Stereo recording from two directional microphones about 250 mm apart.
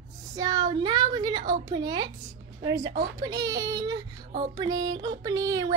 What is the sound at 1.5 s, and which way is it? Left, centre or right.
Music, centre.